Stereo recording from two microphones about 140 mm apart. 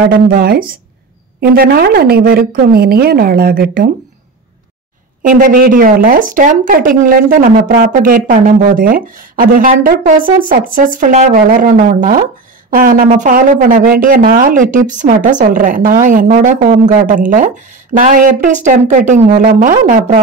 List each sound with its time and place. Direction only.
0.1 s speech: 90° right
5.2 s speech: 85° right
10.2 s speech: 75° right (ahead or behind)
12.7 s speech: 85° right
13.1 s speech: 70° right (ahead or behind)